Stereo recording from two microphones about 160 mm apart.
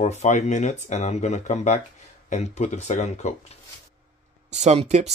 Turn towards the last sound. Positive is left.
turn(degrees=-45)  # may be behind; listen again after turning